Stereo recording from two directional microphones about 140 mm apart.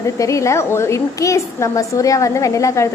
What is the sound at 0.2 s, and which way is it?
A woman's voice, 20° left (ahead or behind).